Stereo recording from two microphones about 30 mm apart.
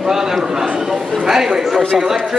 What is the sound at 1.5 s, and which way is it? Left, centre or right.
Speech, centre.